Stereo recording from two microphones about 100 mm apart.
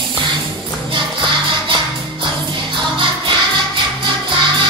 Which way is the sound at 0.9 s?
55° right (ahead or behind).